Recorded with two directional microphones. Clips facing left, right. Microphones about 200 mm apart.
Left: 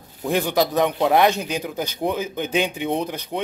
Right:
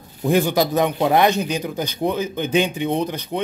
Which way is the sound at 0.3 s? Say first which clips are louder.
Right 3 dB; centre (ahead or behind).